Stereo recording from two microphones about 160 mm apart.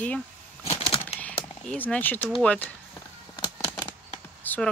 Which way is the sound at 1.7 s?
10° left (ahead or behind).